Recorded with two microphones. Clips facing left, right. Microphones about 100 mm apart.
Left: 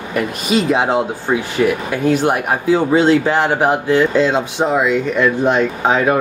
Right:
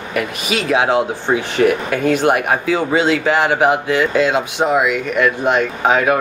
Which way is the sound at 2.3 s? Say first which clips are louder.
Left 1 dB; 80° right.